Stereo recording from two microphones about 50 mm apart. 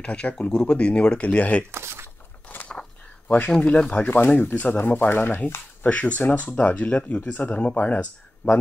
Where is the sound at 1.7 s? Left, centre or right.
Right.